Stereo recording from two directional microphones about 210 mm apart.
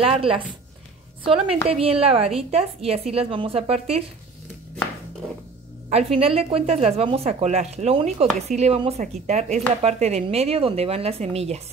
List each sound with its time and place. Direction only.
0.0 s speech: 25° right (ahead or behind)
1.7 s speech: 25° right (ahead or behind)
5.9 s speech: 30° right (ahead or behind)